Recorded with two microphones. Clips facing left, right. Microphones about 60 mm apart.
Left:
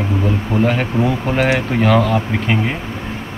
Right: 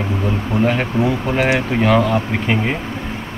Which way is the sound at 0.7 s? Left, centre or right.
Centre.